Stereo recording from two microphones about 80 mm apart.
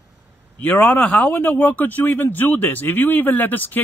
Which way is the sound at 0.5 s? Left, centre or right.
Left.